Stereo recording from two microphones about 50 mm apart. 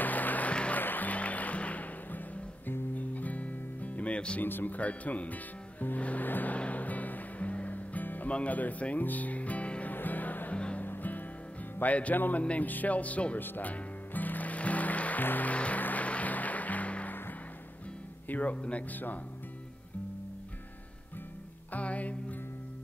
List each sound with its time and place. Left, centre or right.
0.0 s music: left
0.7 s music: left
4.4 s speech: left
4.7 s music: left
8.3 s speech: left
9.9 s music: left
10.5 s music: left
10.9 s music: left
11.8 s speech: left
13.4 s music: left
15.2 s speech: left
15.5 s music: left
18.3 s speech: left
21.7 s music: left